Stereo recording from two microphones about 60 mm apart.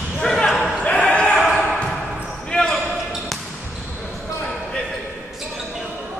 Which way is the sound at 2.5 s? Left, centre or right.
Centre.